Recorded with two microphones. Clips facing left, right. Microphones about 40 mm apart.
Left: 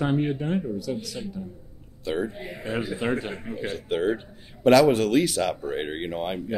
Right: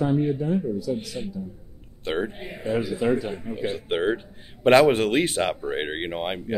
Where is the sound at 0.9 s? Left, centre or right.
Right.